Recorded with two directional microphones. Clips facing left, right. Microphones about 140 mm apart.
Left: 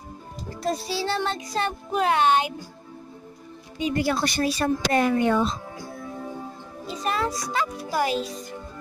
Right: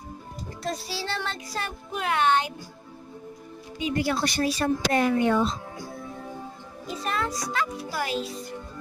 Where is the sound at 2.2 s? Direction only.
15° left (ahead or behind).